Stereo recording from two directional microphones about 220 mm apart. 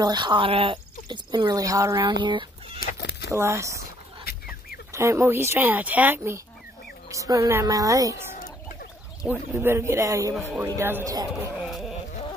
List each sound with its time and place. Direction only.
0.0 s speech: 20° right (ahead or behind)
2.8 s chicken: 45° left (ahead or behind)
3.3 s speech: 10° right (ahead or behind)
4.2 s fowl: 45° left (ahead or behind)
4.9 s speech: 10° right (ahead or behind)
9.3 s speech: 10° right (ahead or behind)
11.6 s a sound: centre (ahead or behind)